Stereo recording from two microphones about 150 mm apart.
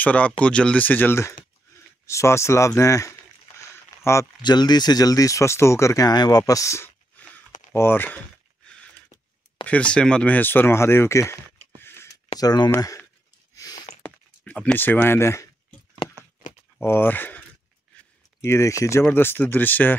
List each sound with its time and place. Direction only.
0.0 s speech: 10° left (ahead or behind)
4.4 s speech: 30° left (ahead or behind); by 8.2 s 15° left (ahead or behind)
9.7 s speech: 5° left (ahead or behind)
12.4 s speech: 25° left (ahead or behind)
13.6 s a sound: 25° left (ahead or behind)
14.0 s a sound: 10° left (ahead or behind)
16.8 s speech: 15° left (ahead or behind)
18.4 s speech: 20° left (ahead or behind)